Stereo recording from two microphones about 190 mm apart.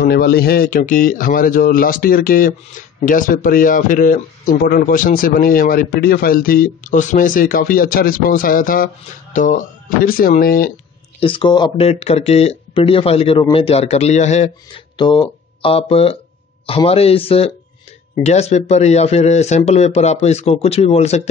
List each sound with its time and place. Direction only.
0.0 s speech: 55° left (ahead or behind)
11.1 s speech: 25° left (ahead or behind)
15.0 s speech: 25° left (ahead or behind)